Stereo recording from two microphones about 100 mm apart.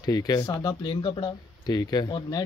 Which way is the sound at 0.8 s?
55° left (ahead or behind).